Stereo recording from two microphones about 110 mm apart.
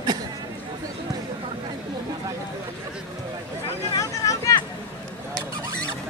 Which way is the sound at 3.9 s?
30° left (ahead or behind).